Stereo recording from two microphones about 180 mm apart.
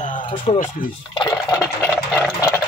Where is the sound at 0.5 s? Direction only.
30° left (ahead or behind).